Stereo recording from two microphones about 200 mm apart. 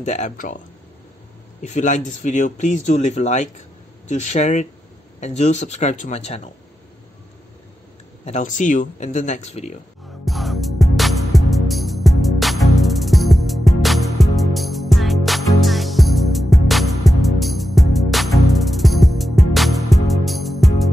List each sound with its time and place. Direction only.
0.0 s speech: 35° left (ahead or behind)
1.6 s speech: 35° left (ahead or behind)
8.3 s speech: 40° left (ahead or behind)
10.2 s music: centre (ahead or behind)